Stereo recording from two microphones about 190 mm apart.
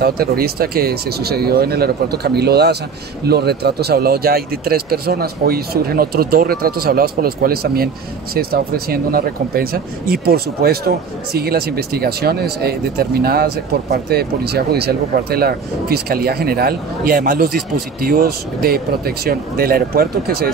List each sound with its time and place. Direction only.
0.0 s speech: 55° right (ahead or behind)